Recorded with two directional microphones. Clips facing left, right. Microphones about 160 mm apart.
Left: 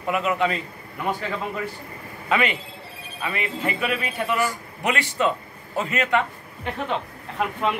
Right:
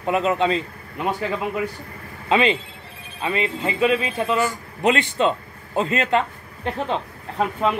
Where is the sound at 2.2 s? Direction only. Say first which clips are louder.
Right 4 dB; 25° right (ahead or behind).